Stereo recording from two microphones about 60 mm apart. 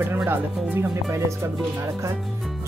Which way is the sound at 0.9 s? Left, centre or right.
Right.